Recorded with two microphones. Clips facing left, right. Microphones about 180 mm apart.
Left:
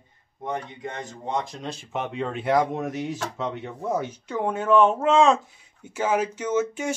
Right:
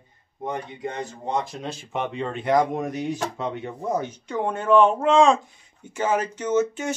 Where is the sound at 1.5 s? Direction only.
5° right (ahead or behind).